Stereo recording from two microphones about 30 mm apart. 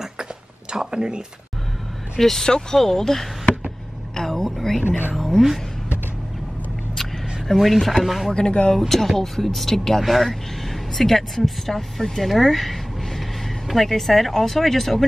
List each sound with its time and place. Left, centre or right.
0.9 s speech: right
2.1 s speech: centre
2.4 s speech: left
4.1 s a sound: centre
4.5 s a sound: centre
5.1 s speech: centre
7.5 s speech: centre
8.4 s speech: left
8.7 s speech: centre
10.0 s speech: centre